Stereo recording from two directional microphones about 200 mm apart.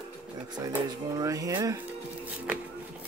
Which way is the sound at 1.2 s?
15° right (ahead or behind).